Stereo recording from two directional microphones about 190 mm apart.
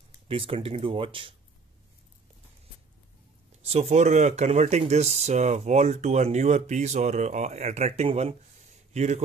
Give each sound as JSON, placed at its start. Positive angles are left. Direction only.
{"t": 0.3, "sound": "speech", "side_deg": -30}
{"t": 3.6, "sound": "speech", "side_deg": -35}